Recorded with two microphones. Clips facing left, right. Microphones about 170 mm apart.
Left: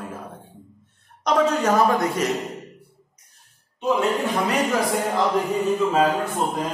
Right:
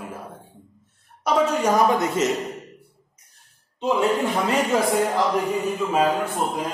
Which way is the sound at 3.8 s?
25° right (ahead or behind).